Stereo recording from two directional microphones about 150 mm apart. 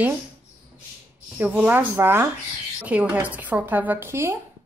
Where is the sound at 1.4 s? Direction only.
10° right (ahead or behind).